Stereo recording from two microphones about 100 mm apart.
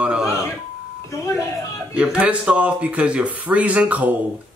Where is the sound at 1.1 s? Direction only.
30° left (ahead or behind).